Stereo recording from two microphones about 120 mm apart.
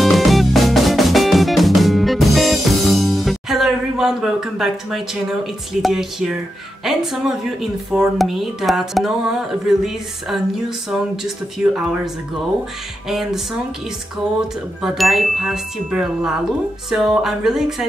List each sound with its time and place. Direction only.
0.0 s music: centre (ahead or behind)
10.9 s speech: 5° right (ahead or behind)
13.1 s speech: centre (ahead or behind)
14.8 s speech: centre (ahead or behind)